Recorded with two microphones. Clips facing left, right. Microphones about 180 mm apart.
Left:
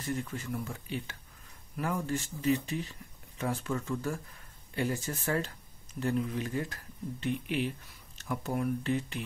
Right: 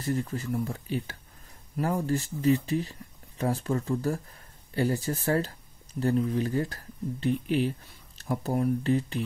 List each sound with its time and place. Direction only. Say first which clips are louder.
0.0 s speech: right 5 dB; 35° right (ahead or behind)